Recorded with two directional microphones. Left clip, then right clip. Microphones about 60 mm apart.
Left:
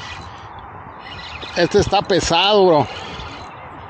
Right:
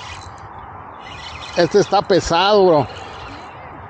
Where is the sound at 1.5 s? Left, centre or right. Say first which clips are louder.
Right 1 dB; left.